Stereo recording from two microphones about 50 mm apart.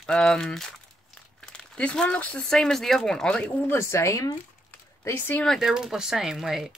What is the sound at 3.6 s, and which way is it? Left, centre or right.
Speech, left.